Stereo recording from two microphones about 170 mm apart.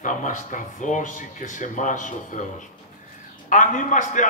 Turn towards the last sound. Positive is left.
turn(degrees=45)  # may be behind; listen again after turning